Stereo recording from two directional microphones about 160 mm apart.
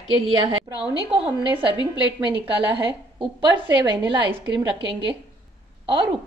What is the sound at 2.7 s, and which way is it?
A woman's voice, 30° right (ahead or behind).